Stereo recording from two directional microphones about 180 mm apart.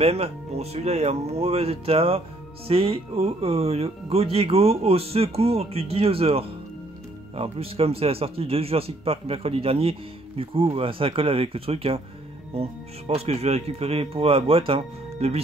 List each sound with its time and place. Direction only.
0.0 s speech: 35° right (ahead or behind)